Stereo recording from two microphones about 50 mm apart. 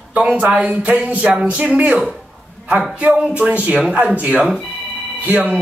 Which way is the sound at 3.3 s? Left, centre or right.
Right.